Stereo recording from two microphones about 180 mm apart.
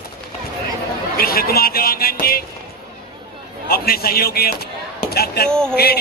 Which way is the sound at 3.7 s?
60° left (ahead or behind).